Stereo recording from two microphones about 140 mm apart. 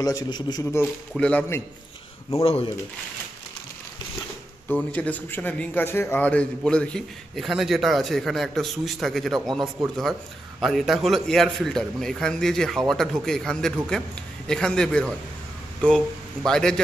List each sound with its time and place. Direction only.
0.0 s a man's voice: 25° left (ahead or behind)
1.1 s a man's voice: 5° left (ahead or behind)
2.4 s speech: 40° left (ahead or behind)
4.6 s speech: 10° left (ahead or behind)
16.4 s speech: 5° left (ahead or behind)